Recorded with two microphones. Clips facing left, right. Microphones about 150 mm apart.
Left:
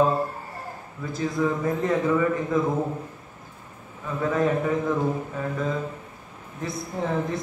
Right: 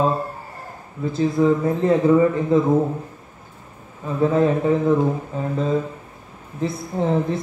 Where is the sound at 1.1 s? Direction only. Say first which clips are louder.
Right 7 dB; 30° right (ahead or behind).